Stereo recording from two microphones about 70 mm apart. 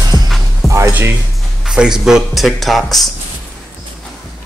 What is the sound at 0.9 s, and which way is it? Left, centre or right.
Speech, right.